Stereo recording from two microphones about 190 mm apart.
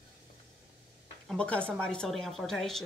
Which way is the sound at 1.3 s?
5° left (ahead or behind).